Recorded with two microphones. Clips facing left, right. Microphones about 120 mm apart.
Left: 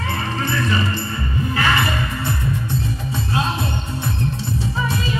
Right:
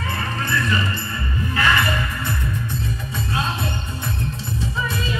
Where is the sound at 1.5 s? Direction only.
25° left (ahead or behind).